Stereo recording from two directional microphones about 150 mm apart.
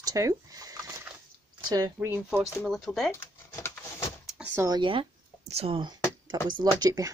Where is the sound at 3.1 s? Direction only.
20° left (ahead or behind).